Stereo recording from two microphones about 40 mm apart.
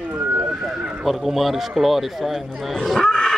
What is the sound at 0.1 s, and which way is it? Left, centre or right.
Horse, right.